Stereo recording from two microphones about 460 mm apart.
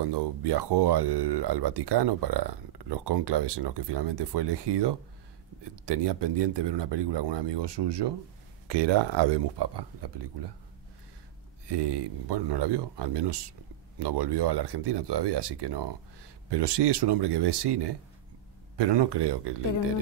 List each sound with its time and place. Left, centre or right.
0.0 s speech: right
11.6 s speech: right